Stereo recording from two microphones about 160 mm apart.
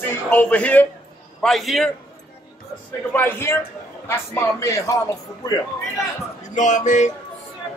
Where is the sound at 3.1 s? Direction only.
10° left (ahead or behind).